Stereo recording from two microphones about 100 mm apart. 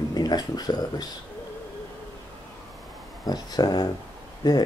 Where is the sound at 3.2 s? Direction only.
40° left (ahead or behind).